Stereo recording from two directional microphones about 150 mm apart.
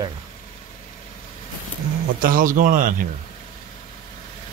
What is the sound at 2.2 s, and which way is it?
Speech, 65° right (ahead or behind).